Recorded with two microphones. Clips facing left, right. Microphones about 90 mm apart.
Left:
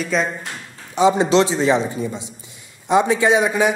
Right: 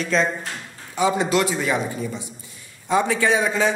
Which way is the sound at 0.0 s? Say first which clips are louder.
Even; 5° left (ahead or behind).